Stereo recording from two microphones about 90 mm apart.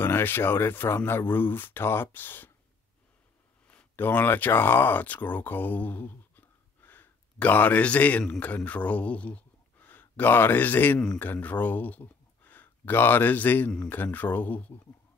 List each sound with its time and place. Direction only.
0.0 s a man's voice: 25° left (ahead or behind)
3.9 s a man's voice: 20° left (ahead or behind)